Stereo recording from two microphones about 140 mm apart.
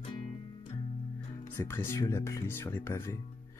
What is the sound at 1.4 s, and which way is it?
Speech, 15° left (ahead or behind).